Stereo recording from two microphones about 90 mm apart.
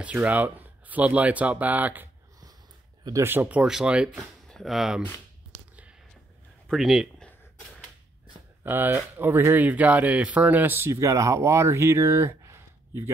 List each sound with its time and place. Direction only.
0.0 s speech: 15° right (ahead or behind)
3.3 s speech: 20° right (ahead or behind); by 5.0 s 5° right (ahead or behind)
5.5 s finger snapping: 15° right (ahead or behind)
6.7 s speech: centre (ahead or behind)
8.6 s speech: 20° right (ahead or behind)
10.9 s speech: 35° right (ahead or behind)